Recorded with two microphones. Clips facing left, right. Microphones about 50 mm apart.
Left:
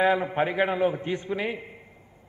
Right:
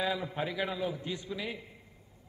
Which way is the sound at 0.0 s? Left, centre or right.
Left.